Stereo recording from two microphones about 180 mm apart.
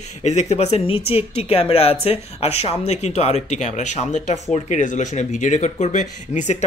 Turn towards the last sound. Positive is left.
turn(degrees=40)  # may be behind; listen again after turning